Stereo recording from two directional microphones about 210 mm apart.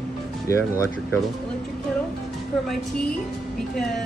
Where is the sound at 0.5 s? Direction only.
15° left (ahead or behind).